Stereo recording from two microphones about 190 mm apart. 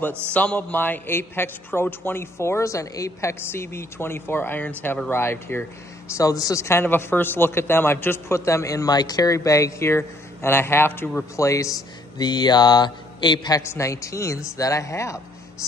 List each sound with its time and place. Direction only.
0.3 s a man's voice: 5° left (ahead or behind)